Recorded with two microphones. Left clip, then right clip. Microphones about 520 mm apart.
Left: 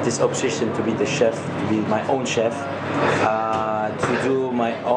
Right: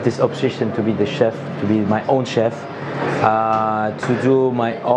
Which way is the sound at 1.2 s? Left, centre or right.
Right.